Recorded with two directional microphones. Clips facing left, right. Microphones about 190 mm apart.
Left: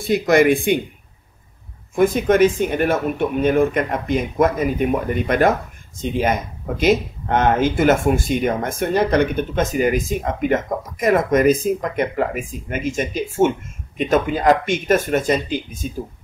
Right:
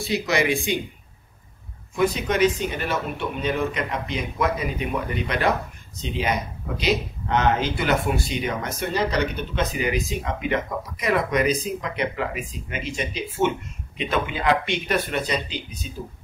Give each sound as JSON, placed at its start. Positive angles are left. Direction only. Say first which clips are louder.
{"t": 0.0, "sound": "speech", "louder": "left 8 dB", "side_deg": 50}
{"t": 2.0, "sound": "speech", "louder": "left 6 dB", "side_deg": 50}